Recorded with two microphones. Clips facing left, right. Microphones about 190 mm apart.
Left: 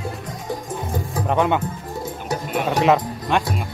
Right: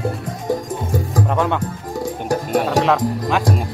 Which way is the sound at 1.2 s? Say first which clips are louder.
Left 4 dB; centre (ahead or behind).